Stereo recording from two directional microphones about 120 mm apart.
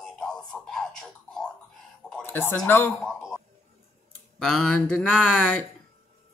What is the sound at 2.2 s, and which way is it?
Speech, 15° left (ahead or behind).